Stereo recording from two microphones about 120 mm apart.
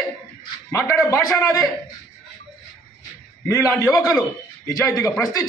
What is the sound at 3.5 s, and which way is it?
Speech, 25° left (ahead or behind).